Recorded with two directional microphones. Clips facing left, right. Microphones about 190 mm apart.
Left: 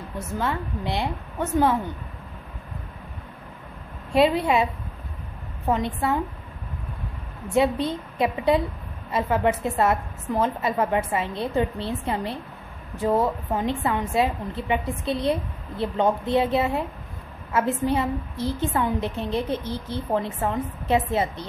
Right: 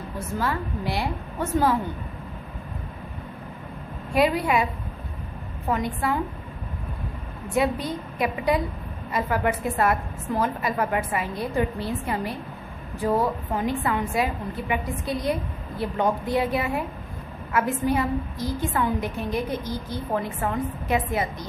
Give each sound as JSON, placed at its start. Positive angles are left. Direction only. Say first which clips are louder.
{"t": 0.4, "sound": "a woman's voice", "louder": "even", "side_deg": 20}
{"t": 4.1, "sound": "a woman's voice", "louder": "left 2 dB", "side_deg": 25}
{"t": 5.7, "sound": "a woman's voice", "louder": "left 2 dB", "side_deg": 25}
{"t": 7.5, "sound": "a woman's voice", "louder": "left 3 dB", "side_deg": 25}